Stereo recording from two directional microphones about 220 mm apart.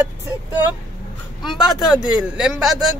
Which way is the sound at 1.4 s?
Centre (ahead or behind).